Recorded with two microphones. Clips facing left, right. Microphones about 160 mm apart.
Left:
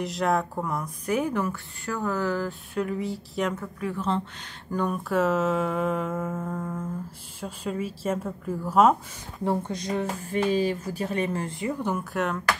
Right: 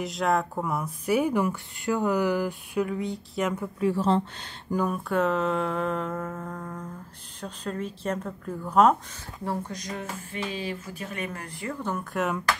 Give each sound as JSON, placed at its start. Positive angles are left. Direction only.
{"t": 0.0, "sound": "speech", "side_deg": 0}
{"t": 2.8, "sound": "a sound", "side_deg": 5}
{"t": 3.5, "sound": "speech", "side_deg": -25}
{"t": 4.7, "sound": "a sound", "side_deg": 0}
{"t": 7.3, "sound": "speech", "side_deg": 5}
{"t": 9.4, "sound": "speech", "side_deg": 25}